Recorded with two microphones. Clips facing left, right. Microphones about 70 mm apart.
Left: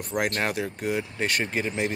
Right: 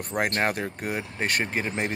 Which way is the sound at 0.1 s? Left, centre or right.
Right.